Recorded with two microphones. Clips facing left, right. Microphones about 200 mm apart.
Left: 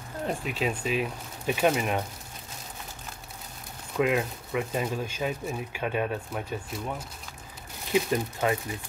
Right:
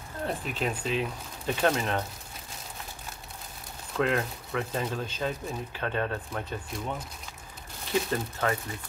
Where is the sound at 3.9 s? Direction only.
10° left (ahead or behind).